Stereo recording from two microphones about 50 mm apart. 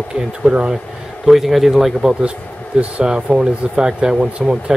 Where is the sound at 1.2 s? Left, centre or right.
Centre.